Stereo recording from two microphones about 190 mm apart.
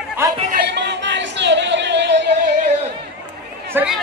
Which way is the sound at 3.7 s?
5° right (ahead or behind).